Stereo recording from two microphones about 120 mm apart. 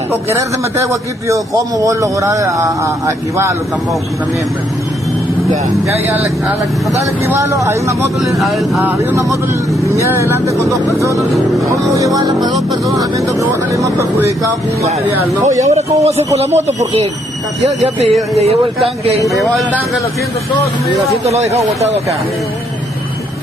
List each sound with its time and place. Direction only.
0.1 s a man's voice: 20° right (ahead or behind)
7.0 s a man's voice: 25° right (ahead or behind)
8.4 s speech: centre (ahead or behind)
8.9 s a man's voice: 25° right (ahead or behind)
11.1 s speech: centre (ahead or behind)
11.9 s a man's voice: 30° right (ahead or behind)
14.8 s speech: 55° right (ahead or behind)